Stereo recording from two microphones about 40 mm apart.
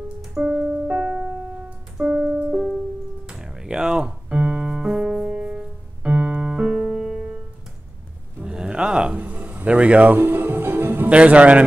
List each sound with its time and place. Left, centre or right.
0.3 s music: right
1.0 s music: centre
2.0 s music: right
3.3 s piano: centre
8.5 s a sound: right
9.1 s a sound: right
10.1 s music: right
11.1 s a man's voice: right